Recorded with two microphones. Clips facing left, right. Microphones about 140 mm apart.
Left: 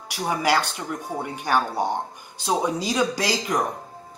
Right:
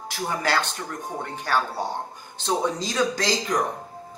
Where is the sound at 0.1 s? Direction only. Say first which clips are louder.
Left 3 dB; 10° left (ahead or behind).